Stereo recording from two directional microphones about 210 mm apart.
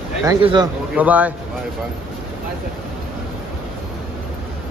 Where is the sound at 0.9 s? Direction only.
5° right (ahead or behind).